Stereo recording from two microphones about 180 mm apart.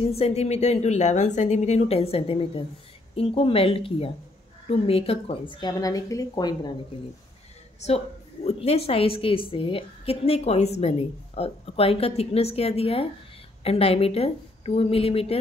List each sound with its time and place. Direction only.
0.0 s a woman's voice: 35° left (ahead or behind)
8.5 s a woman's voice: 35° left (ahead or behind)